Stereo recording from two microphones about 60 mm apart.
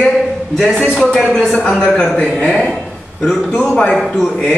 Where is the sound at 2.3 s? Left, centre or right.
Centre.